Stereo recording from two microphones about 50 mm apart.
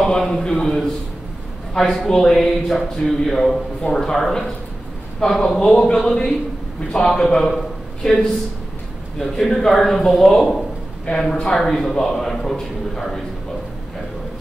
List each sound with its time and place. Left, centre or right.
0.0 s a man's voice: centre
9.2 s a man's voice: centre